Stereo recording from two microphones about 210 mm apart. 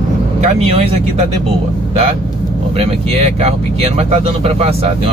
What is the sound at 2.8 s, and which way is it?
Speech, 30° right (ahead or behind).